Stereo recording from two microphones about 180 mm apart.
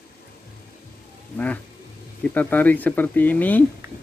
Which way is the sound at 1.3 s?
10° left (ahead or behind).